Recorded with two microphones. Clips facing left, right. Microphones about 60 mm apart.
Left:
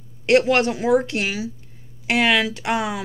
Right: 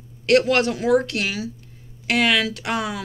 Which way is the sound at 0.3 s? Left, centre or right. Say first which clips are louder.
Left 1 dB; left.